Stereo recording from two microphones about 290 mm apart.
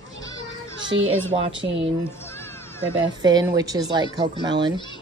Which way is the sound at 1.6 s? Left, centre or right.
Right.